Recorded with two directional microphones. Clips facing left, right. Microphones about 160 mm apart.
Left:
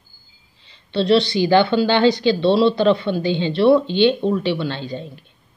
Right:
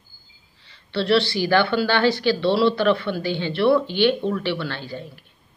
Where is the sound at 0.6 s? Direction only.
20° left (ahead or behind).